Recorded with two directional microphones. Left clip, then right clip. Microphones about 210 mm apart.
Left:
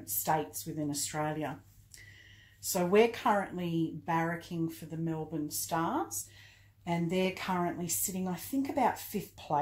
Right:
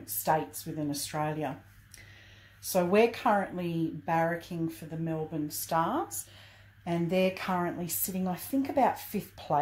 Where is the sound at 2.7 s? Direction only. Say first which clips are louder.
Right 2 dB; 30° right (ahead or behind).